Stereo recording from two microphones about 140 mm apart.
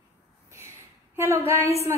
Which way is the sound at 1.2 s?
20° right (ahead or behind).